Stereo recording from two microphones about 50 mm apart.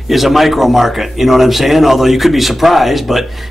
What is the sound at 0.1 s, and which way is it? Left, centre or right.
A man's voice, centre.